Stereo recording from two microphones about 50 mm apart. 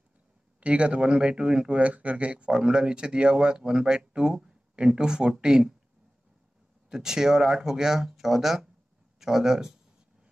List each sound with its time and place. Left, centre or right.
0.6 s speech: right
6.9 s speech: centre